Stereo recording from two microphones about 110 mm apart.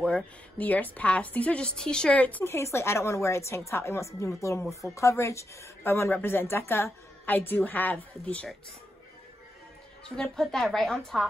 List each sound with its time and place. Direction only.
0.0 s a woman's voice: 10° left (ahead or behind)
10.0 s a woman's voice: 5° left (ahead or behind)